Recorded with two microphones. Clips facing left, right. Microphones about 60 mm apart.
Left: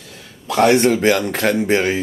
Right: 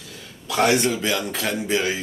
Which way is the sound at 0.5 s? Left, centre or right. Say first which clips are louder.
Left 6 dB; left.